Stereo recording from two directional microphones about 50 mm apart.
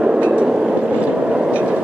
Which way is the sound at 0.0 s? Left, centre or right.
Centre.